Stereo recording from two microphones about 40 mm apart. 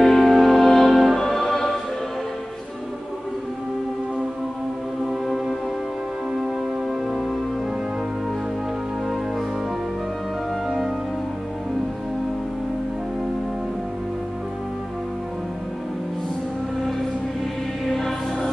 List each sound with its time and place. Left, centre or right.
0.0 s music: centre
5.0 s music: centre
17.8 s music: centre